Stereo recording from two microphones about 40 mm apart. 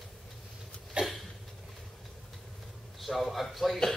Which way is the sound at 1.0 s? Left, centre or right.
Right.